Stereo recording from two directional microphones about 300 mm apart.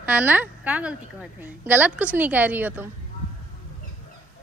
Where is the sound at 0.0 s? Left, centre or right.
Centre.